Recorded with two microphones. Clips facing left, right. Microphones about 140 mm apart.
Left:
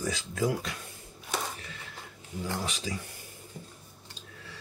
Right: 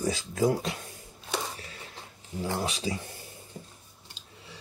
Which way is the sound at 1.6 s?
35° right (ahead or behind).